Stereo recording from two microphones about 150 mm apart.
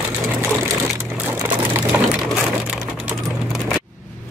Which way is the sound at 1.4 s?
10° right (ahead or behind).